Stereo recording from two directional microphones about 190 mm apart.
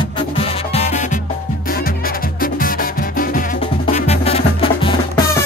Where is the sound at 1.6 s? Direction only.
50° left (ahead or behind).